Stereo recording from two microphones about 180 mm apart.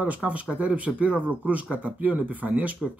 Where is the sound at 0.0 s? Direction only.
10° right (ahead or behind).